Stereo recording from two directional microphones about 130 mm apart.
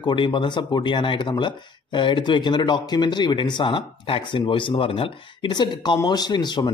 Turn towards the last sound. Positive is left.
turn(degrees=35)  # may be behind; listen again after turning